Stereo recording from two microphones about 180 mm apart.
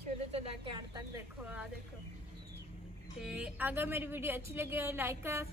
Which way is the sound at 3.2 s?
5° right (ahead or behind).